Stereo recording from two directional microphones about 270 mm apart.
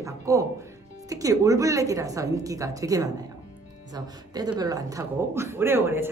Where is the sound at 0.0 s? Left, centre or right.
Centre.